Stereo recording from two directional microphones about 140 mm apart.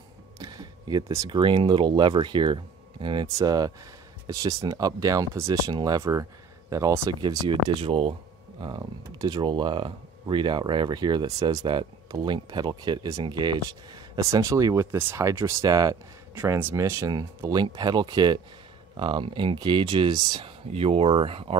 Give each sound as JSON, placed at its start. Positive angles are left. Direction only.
{"t": 0.4, "sound": "speech", "side_deg": -30}
{"t": 7.2, "sound": "speech", "side_deg": -35}
{"t": 20.7, "sound": "speech", "side_deg": -45}